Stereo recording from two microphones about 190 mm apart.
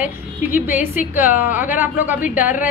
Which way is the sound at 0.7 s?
45° left (ahead or behind).